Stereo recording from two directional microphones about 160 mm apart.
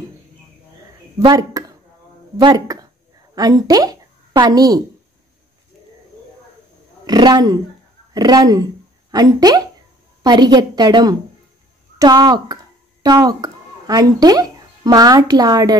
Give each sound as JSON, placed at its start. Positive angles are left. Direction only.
{"t": 1.2, "sound": "a woman's voice", "side_deg": -25}
{"t": 7.1, "sound": "a woman's voice", "side_deg": -25}